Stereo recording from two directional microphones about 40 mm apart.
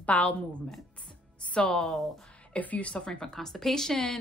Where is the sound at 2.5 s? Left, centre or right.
Left.